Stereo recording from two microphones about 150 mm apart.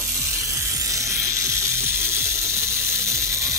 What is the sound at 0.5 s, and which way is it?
Music, 20° right (ahead or behind).